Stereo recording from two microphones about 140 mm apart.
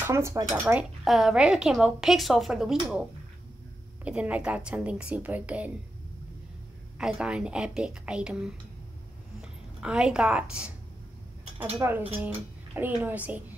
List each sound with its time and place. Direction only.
0.0 s speech: 20° right (ahead or behind)
0.7 s a woman's voice: 5° right (ahead or behind)
4.0 s a woman's voice: 10° right (ahead or behind)
7.0 s a woman's voice: 5° right (ahead or behind)